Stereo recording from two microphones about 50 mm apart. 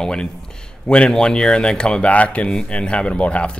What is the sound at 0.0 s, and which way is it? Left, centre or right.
Speech, centre.